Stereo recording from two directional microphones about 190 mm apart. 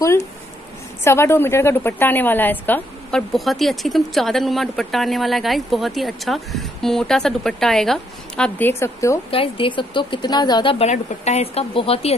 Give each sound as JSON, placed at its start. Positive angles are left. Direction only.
{"t": 1.0, "sound": "a woman's voice", "side_deg": 15}
{"t": 9.3, "sound": "speech", "side_deg": 30}